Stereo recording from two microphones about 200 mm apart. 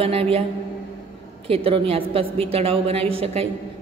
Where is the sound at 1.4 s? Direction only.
30° right (ahead or behind).